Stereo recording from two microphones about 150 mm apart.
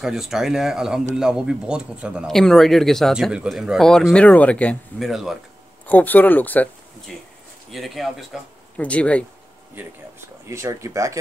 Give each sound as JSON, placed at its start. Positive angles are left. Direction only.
{"t": 0.0, "sound": "speech", "side_deg": 0}
{"t": 5.9, "sound": "speech", "side_deg": 10}
{"t": 7.7, "sound": "speech", "side_deg": 0}
{"t": 10.5, "sound": "speech", "side_deg": -20}